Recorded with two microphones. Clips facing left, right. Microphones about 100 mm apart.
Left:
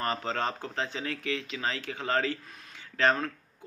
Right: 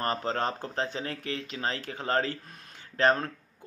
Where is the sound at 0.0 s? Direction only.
35° right (ahead or behind).